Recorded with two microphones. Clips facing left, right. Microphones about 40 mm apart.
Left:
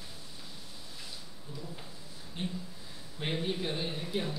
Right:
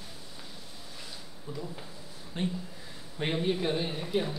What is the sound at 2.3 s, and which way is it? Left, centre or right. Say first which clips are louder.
Speech: right 5 dB; centre.